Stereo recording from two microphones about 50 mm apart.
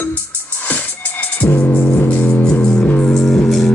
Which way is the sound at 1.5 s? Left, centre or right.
Left.